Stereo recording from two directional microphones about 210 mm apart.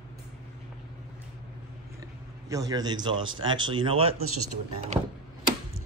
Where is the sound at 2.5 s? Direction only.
15° right (ahead or behind).